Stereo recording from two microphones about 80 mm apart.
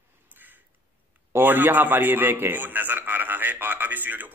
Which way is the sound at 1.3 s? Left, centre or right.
Right.